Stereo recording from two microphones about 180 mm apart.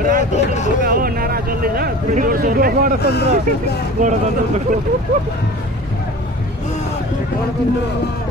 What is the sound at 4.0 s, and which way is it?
Speech, 40° right (ahead or behind).